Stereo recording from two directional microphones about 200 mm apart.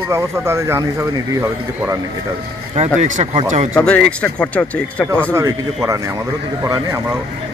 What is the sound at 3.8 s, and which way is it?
Speech, 5° left (ahead or behind).